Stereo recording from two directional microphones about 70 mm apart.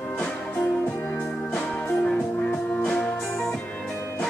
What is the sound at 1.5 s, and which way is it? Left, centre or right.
Music, centre.